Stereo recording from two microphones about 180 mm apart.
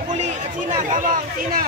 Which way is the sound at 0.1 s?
40° right (ahead or behind).